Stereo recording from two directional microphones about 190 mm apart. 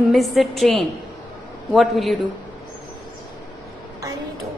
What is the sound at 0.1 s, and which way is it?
A woman's voice, centre (ahead or behind).